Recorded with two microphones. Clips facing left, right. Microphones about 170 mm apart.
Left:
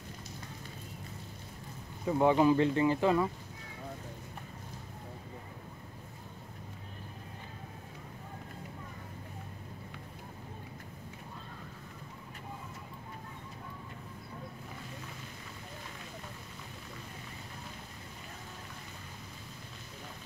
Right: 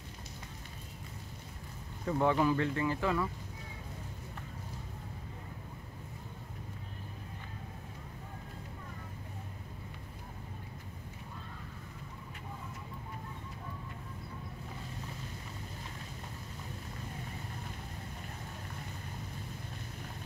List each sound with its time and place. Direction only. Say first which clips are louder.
2.0 s speech: left 4 dB; 15° left (ahead or behind)